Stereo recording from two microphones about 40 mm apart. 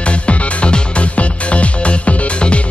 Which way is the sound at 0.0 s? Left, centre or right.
Left.